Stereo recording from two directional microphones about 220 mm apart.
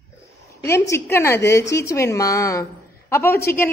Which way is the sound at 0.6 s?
15° left (ahead or behind).